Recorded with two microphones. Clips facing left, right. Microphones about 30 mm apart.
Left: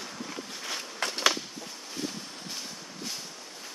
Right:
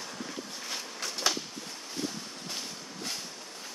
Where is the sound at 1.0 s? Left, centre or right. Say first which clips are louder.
Left 6 dB; left.